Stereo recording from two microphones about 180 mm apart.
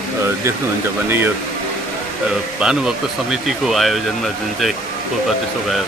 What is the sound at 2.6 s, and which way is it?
Speech, 5° right (ahead or behind).